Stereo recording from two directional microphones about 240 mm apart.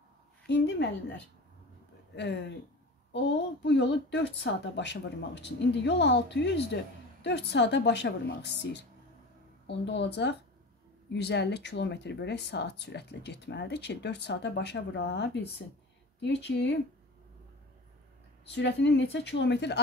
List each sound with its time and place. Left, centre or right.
0.5 s speech: left
2.1 s speech: left
18.5 s speech: left